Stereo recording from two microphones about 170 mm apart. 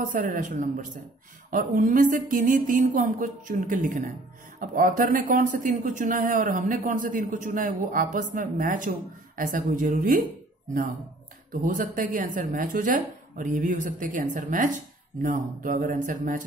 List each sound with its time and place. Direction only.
0.0 s speech: 50° right (ahead or behind)
11.6 s speech: 50° right (ahead or behind)